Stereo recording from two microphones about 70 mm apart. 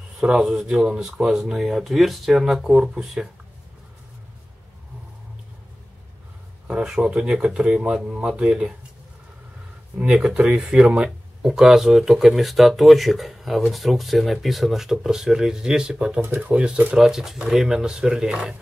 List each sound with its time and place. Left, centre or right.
0.2 s speech: centre
6.7 s speech: centre
9.9 s speech: centre
16.9 s speech: centre